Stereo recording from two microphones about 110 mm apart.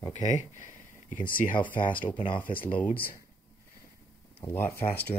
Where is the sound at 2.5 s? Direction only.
55° left (ahead or behind).